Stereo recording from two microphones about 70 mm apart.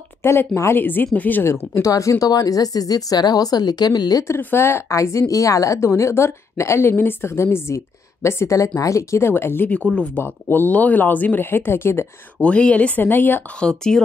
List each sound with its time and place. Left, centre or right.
0.2 s a woman's voice: left
1.7 s a woman's voice: left
4.4 s a woman's voice: left
9.3 s a woman's voice: left
9.8 s speech: centre
10.2 s speech: left
12.4 s speech: centre
13.6 s speech: centre